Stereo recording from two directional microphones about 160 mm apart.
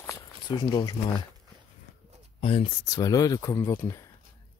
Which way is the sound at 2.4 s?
35° left (ahead or behind).